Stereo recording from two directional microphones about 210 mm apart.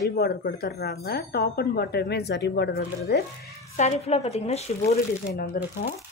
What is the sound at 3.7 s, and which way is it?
A woman's voice, 35° left (ahead or behind).